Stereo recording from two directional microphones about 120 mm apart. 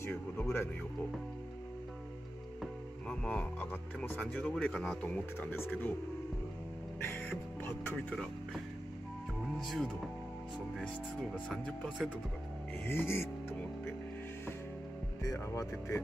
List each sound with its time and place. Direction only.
0.0 s speech: 15° left (ahead or behind)
2.6 s speech: 10° left (ahead or behind)
7.0 s speech: 15° left (ahead or behind)
9.6 s speech: centre (ahead or behind)
11.4 s speech: 5° left (ahead or behind)
12.8 s music: 20° left (ahead or behind)
15.2 s speech: 25° left (ahead or behind)